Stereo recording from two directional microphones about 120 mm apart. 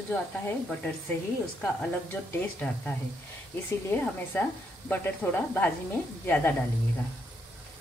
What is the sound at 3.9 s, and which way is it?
Speech, 15° left (ahead or behind).